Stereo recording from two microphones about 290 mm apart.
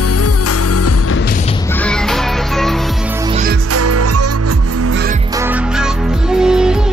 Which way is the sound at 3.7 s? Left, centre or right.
Right.